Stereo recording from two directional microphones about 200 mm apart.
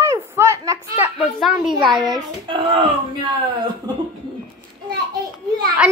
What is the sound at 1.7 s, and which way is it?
A child's voice, 20° right (ahead or behind).